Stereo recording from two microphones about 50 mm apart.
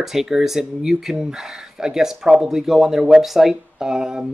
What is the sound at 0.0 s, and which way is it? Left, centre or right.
Speech, centre.